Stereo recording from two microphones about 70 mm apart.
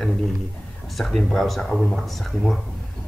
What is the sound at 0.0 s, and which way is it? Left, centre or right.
A man's voice, centre.